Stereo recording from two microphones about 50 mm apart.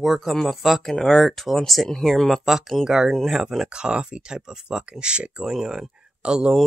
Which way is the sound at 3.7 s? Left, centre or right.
Centre.